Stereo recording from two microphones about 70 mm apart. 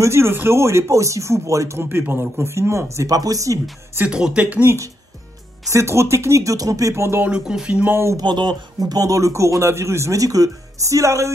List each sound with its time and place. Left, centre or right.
0.0 s a man's voice: right
1.8 s a man's voice: right
4.0 s speech: centre
5.7 s a man's voice: right
7.2 s speech: centre
7.9 s speech: right
8.2 s a man's voice: right